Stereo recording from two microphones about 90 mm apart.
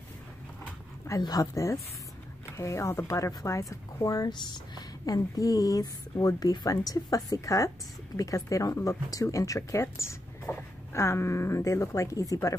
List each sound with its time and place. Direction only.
1.2 s speech: 45° left (ahead or behind)